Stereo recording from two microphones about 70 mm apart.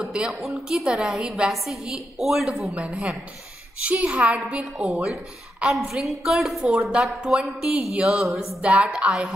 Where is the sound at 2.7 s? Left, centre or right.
Centre.